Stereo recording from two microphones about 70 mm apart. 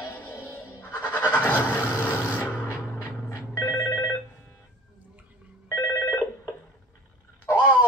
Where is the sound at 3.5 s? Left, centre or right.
Left.